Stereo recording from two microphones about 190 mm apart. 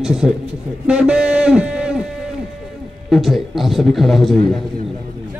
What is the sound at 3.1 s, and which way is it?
A man's voice, centre (ahead or behind).